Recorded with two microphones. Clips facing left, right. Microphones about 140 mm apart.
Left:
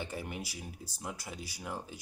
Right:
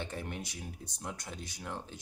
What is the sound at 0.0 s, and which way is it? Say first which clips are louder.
Speech: even; 5° left (ahead or behind).